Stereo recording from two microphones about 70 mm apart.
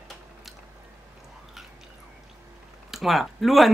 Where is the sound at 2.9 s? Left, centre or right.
Centre.